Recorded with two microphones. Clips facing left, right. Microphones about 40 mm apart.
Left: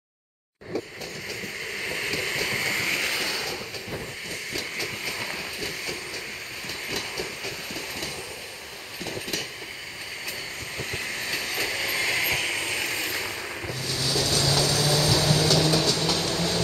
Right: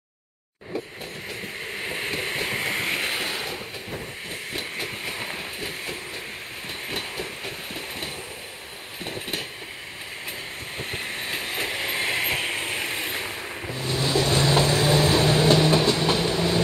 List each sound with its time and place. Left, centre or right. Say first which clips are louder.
1.4 s a sound: even; right
4.3 s train: even; right
9.1 s vehicle: even; right
10.8 s train: even; right
13.7 s vehicle: right 5 dB; right